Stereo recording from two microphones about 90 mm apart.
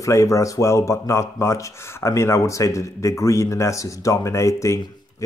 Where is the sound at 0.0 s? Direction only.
35° left (ahead or behind).